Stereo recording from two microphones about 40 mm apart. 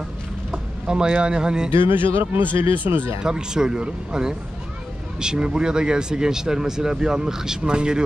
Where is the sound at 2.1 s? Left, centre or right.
Right.